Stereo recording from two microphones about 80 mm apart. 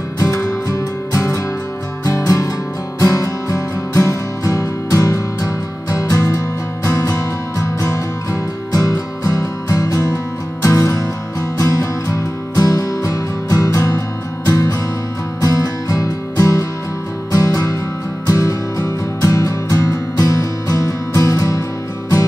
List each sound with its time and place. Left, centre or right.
0.2 s music: left